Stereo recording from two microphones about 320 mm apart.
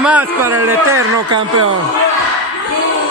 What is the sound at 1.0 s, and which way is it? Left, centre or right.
Speech, right.